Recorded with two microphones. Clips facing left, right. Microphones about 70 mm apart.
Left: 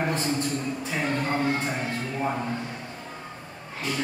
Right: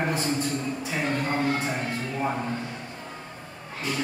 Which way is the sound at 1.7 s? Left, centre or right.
Centre.